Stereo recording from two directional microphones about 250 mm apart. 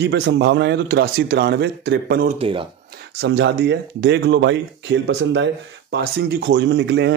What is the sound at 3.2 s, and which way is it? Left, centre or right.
Speech, right.